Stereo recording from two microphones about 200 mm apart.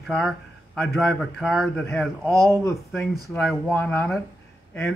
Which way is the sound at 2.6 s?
10° left (ahead or behind).